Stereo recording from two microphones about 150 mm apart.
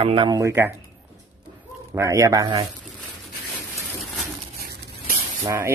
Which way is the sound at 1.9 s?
20° right (ahead or behind).